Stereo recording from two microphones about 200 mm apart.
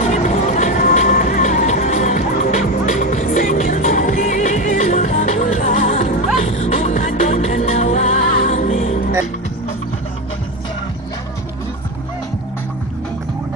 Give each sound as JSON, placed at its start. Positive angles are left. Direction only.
{"t": 0.1, "sound": "music", "side_deg": 35}